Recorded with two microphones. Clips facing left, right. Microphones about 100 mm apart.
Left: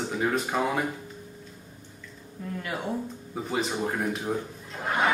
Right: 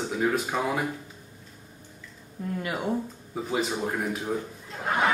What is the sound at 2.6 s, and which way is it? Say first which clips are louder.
Speech: right 2 dB; 10° right (ahead or behind).